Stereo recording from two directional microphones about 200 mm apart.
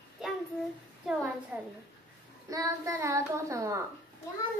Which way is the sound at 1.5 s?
10° right (ahead or behind).